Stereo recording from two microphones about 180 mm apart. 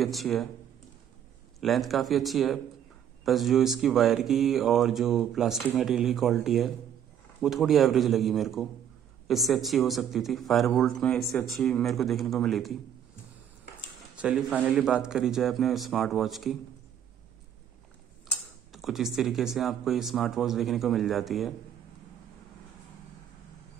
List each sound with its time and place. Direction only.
0.0 s speech: centre (ahead or behind)
1.6 s speech: centre (ahead or behind)
14.1 s speech: 5° right (ahead or behind)
18.7 s speech: centre (ahead or behind)